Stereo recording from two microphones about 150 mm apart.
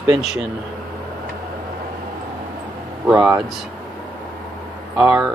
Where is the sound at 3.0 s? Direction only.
15° right (ahead or behind).